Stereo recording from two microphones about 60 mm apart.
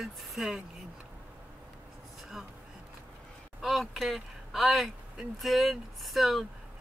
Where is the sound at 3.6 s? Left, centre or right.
Centre.